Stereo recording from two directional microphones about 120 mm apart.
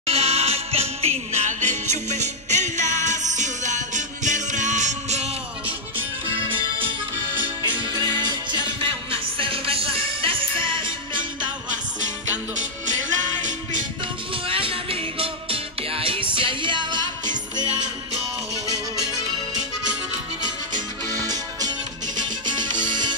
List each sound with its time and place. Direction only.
0.0 s music: 55° right (ahead or behind); by 5.3 s 75° right (ahead or behind)
7.6 s music: 40° right (ahead or behind)
9.4 s music: 50° right (ahead or behind)
12.5 s music: 90° right
14.3 s music: 50° right (ahead or behind)
20.4 s music: 35° right (ahead or behind)